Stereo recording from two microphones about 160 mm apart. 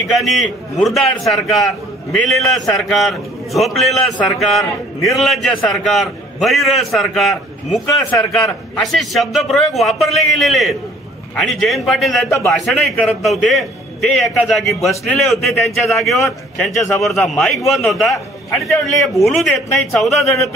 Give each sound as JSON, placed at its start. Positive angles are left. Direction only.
{"t": 0.2, "sound": "a man's voice", "side_deg": 0}
{"t": 12.3, "sound": "a man's voice", "side_deg": 15}
{"t": 12.5, "sound": "a man's voice", "side_deg": 0}
{"t": 19.2, "sound": "a man's voice", "side_deg": 0}